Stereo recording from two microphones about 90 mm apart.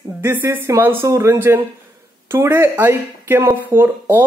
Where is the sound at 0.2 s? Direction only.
25° right (ahead or behind).